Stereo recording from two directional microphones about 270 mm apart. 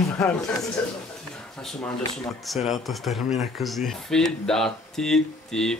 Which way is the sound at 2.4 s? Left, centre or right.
Centre.